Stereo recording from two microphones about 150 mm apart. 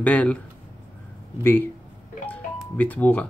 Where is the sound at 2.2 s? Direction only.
10° left (ahead or behind).